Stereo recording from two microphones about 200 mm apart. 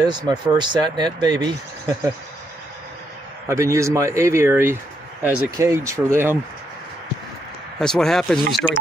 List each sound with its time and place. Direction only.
0.0 s speech: 20° right (ahead or behind)
3.4 s speech: 15° right (ahead or behind)
7.8 s speech: 5° left (ahead or behind)